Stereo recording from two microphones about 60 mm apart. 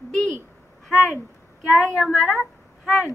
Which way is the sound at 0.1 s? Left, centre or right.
Centre.